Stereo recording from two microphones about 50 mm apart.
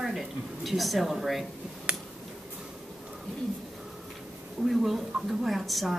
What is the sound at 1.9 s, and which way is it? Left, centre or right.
Finger snapping, centre.